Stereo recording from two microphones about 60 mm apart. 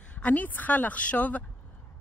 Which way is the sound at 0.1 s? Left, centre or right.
Left.